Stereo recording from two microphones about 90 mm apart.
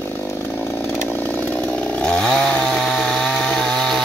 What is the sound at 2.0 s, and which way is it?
Chainsaw, 10° left (ahead or behind).